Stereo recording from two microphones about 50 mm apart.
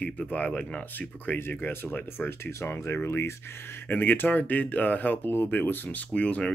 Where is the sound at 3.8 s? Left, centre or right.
Left.